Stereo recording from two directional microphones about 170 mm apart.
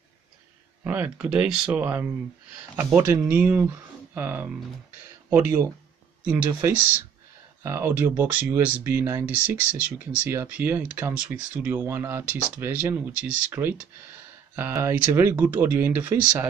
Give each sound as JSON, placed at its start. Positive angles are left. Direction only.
{"t": 0.8, "sound": "speech", "side_deg": -10}